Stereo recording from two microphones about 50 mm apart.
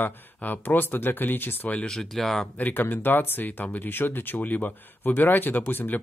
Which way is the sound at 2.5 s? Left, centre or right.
Left.